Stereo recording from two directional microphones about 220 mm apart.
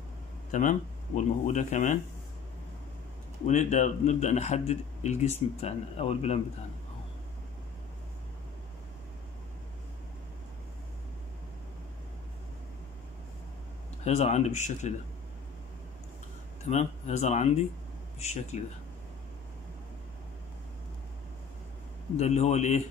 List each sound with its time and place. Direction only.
0.5 s speech: 35° left (ahead or behind)
3.4 s speech: 30° left (ahead or behind)
14.0 s speech: 30° left (ahead or behind)
16.6 s speech: 30° left (ahead or behind)
22.1 s speech: 30° left (ahead or behind)